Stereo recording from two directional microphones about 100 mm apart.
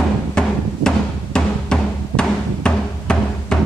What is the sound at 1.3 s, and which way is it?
Music, 10° left (ahead or behind).